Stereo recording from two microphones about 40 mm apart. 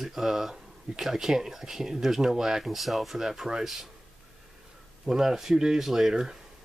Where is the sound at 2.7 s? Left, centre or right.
Centre.